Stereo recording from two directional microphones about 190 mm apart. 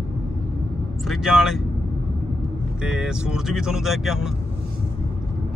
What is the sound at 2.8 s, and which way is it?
Speech, 5° right (ahead or behind).